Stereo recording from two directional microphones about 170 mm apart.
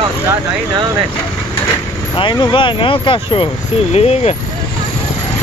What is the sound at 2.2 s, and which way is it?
Speech, 25° left (ahead or behind).